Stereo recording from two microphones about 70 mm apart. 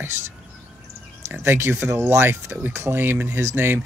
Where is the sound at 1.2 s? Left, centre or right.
Right.